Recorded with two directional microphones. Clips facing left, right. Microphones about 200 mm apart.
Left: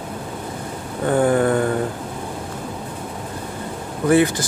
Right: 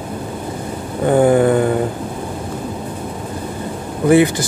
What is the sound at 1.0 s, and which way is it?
Speech, 10° right (ahead or behind).